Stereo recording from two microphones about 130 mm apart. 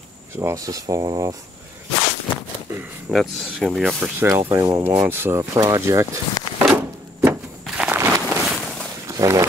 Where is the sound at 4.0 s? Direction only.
20° right (ahead or behind).